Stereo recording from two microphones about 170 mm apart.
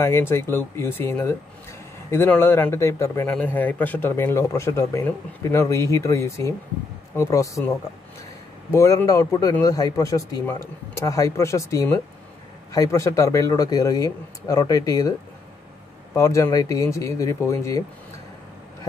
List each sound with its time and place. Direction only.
0.0 s a man's voice: 15° left (ahead or behind)
8.7 s a man's voice: 20° left (ahead or behind)